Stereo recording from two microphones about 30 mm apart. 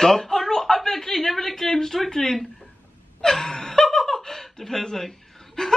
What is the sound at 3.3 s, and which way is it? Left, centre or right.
Laughter, centre.